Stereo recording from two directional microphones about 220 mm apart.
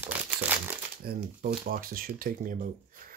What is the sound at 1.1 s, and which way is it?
Speech, 45° right (ahead or behind).